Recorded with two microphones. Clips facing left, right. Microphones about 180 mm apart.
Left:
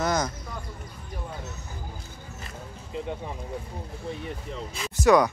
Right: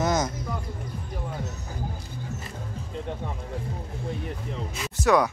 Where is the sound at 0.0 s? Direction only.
20° right (ahead or behind).